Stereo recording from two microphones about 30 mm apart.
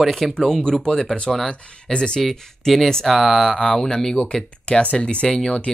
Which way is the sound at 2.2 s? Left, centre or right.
Centre.